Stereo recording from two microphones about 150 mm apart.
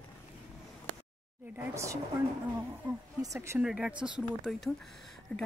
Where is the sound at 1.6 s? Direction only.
20° right (ahead or behind).